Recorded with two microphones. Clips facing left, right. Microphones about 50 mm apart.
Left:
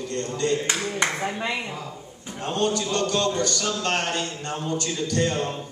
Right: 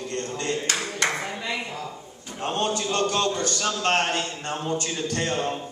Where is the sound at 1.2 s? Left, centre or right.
Left.